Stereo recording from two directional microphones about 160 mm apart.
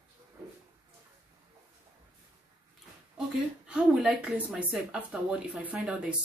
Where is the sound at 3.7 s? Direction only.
5° right (ahead or behind).